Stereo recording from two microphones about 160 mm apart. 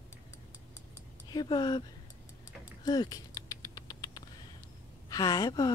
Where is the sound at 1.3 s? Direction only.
25° left (ahead or behind).